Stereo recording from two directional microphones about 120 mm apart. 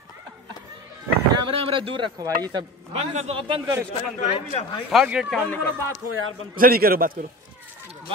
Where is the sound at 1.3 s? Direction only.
45° right (ahead or behind).